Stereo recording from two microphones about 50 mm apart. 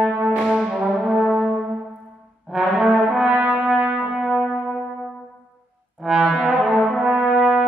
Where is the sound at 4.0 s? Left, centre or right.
Centre.